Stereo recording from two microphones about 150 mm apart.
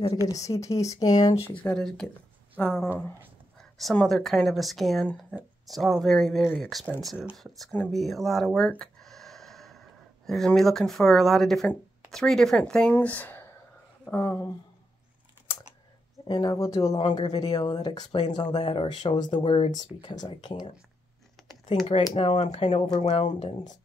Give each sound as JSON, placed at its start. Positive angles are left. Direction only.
{"t": 0.5, "sound": "speech", "side_deg": 20}
{"t": 1.6, "sound": "speech", "side_deg": 5}
{"t": 3.5, "sound": "speech", "side_deg": 0}
{"t": 16.3, "sound": "speech", "side_deg": 25}
{"t": 18.0, "sound": "speech", "side_deg": 50}
{"t": 18.3, "sound": "speech", "side_deg": 30}
{"t": 22.1, "sound": "speech", "side_deg": 40}
{"t": 23.0, "sound": "speech", "side_deg": 45}